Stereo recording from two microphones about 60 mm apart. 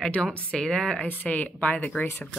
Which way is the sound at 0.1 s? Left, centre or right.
Left.